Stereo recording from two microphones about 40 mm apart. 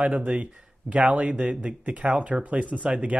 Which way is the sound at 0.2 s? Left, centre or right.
Right.